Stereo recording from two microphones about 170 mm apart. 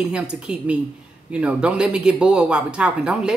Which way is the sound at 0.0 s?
5° right (ahead or behind).